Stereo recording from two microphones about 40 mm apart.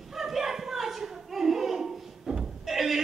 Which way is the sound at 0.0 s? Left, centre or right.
Centre.